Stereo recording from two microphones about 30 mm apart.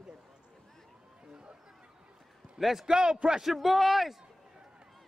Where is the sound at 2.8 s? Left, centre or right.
Right.